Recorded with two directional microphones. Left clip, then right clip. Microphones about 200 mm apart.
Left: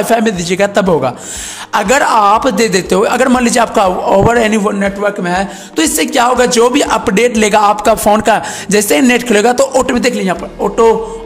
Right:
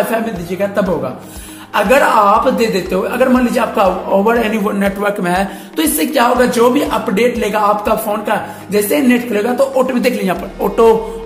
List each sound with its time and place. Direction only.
0.5 s speech: 40° left (ahead or behind)
4.6 s a man's voice: 15° left (ahead or behind)
5.8 s speech: 35° left (ahead or behind)
10.2 s a man's voice: 10° left (ahead or behind)